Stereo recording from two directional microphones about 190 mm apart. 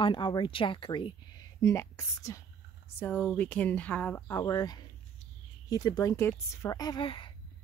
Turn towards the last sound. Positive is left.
turn(degrees=25)  # may be behind; listen again after turning